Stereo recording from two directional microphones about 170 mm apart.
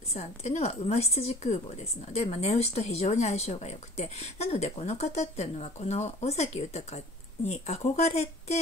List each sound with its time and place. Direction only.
0.1 s a woman's voice: 40° left (ahead or behind)